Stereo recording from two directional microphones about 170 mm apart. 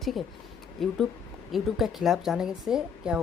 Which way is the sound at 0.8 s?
Centre (ahead or behind).